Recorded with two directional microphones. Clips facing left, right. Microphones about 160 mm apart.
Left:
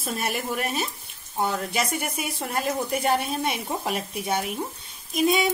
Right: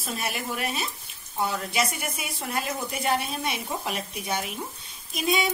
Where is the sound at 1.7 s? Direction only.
50° left (ahead or behind).